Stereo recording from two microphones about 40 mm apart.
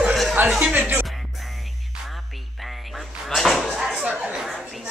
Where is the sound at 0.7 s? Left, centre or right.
Right.